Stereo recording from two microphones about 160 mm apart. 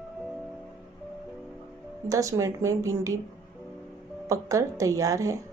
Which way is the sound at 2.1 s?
20° right (ahead or behind).